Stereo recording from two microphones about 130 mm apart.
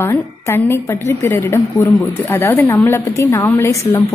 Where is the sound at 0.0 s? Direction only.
20° left (ahead or behind).